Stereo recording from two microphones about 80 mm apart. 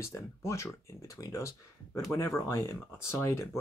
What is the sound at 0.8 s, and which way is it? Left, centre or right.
Speech, left.